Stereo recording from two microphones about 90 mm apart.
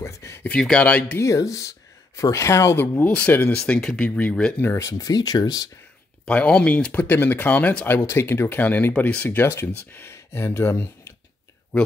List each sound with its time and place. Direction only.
0.0 s a sound: 30° left (ahead or behind)
0.5 s speech: 10° left (ahead or behind)
1.2 s speech: 35° left (ahead or behind)
3.1 s speech: 15° left (ahead or behind)
4.6 s speech: 30° left (ahead or behind); by 5.7 s 45° left (ahead or behind)
6.2 s speech: 10° left (ahead or behind); by 11.1 s 25° left (ahead or behind)